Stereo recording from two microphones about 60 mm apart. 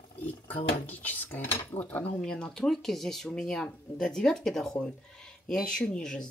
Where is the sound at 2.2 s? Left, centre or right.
Centre.